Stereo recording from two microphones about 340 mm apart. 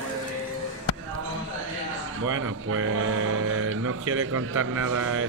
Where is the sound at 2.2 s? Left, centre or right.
Right.